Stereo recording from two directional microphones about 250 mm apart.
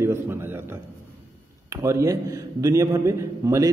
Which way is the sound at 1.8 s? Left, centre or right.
Centre.